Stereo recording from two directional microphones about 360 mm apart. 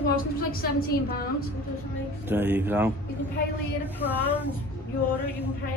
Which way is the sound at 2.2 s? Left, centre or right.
Centre.